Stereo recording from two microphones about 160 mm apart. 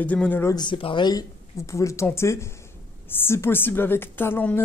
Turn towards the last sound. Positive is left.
turn(degrees=15)  # may be behind; listen again after turning